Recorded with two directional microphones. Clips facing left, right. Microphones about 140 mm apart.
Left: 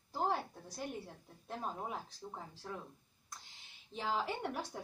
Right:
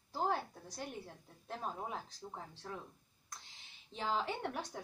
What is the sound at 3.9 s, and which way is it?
Speech, 5° left (ahead or behind).